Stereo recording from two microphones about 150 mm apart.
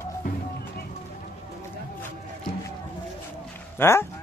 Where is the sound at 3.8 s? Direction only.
15° left (ahead or behind).